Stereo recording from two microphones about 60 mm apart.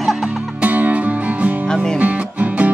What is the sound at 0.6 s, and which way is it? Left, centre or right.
Music, right.